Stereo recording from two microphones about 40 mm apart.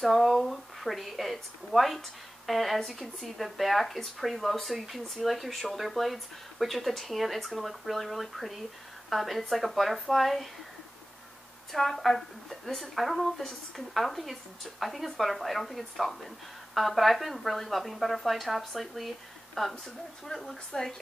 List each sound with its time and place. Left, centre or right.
0.0 s speech: centre
11.7 s speech: centre
20.7 s speech: centre